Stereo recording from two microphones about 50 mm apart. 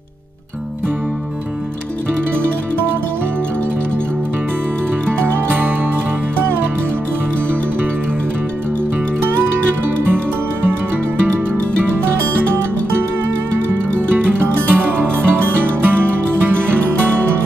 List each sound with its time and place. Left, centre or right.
5.1 s music: right
5.5 s music: right
9.2 s music: right
13.9 s music: right